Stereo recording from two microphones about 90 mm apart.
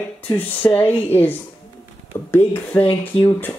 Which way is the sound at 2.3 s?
25° left (ahead or behind).